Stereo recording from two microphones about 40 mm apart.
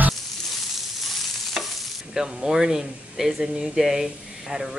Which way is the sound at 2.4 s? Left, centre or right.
Centre.